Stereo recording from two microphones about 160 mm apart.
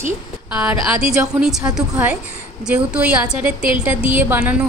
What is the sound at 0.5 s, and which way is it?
A woman's voice, 10° right (ahead or behind).